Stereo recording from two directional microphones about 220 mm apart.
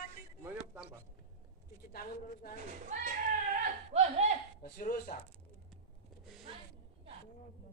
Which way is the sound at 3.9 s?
30° right (ahead or behind).